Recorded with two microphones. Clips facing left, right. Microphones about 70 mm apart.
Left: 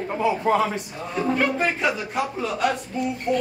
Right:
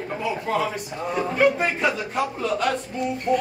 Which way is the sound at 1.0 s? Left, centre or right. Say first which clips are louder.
Right 2 dB; centre.